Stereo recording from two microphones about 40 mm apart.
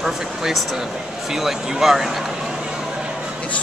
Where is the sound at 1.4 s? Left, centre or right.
Centre.